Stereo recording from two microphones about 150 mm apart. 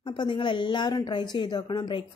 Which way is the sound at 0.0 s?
30° left (ahead or behind).